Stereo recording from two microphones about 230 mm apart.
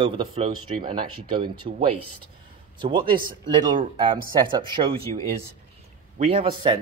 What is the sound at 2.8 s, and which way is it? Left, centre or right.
Speech, right.